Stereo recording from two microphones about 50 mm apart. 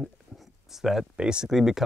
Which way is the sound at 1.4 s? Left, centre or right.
Centre.